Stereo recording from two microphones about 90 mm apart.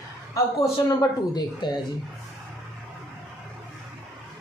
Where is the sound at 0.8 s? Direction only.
50° left (ahead or behind).